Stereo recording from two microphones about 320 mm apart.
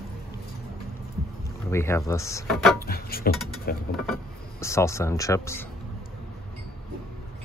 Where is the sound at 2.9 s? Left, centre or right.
Left.